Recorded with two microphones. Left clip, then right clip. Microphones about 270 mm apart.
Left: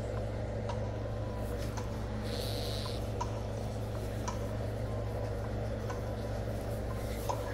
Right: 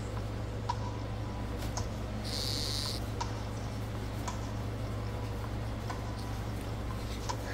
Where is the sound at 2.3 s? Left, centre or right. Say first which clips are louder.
Right 3 dB; centre.